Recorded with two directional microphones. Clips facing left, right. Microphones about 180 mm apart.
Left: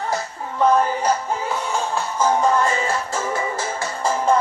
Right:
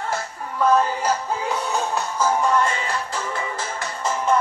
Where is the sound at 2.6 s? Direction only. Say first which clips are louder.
Left 2 dB; 40° left (ahead or behind).